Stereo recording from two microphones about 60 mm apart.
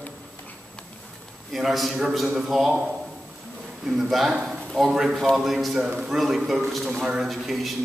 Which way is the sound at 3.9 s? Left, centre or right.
Centre.